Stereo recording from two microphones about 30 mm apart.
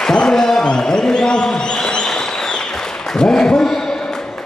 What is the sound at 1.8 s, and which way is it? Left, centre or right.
Applause, left.